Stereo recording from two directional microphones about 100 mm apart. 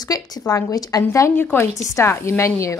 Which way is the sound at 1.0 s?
25° left (ahead or behind).